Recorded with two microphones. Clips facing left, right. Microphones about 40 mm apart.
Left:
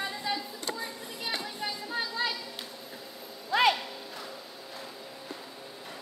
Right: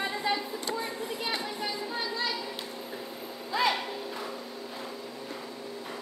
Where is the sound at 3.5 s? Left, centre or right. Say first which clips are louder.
Left 3 dB; left.